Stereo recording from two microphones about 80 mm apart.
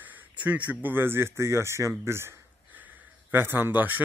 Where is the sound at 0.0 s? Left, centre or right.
Centre.